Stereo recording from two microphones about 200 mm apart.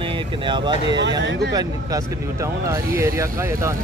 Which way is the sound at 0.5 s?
20° right (ahead or behind).